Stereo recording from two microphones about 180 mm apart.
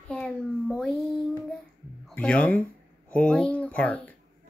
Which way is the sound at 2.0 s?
5° left (ahead or behind).